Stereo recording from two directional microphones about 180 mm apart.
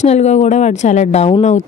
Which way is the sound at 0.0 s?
40° left (ahead or behind).